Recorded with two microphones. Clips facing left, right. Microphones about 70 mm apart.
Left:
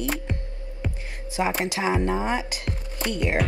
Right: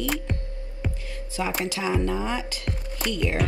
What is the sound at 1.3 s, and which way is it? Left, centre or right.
Speech, left.